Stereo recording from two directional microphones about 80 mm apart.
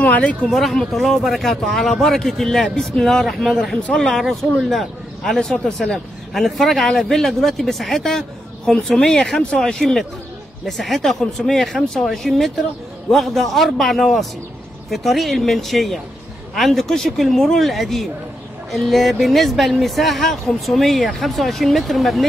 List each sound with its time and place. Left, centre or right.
0.0 s speech: centre
0.5 s speech: centre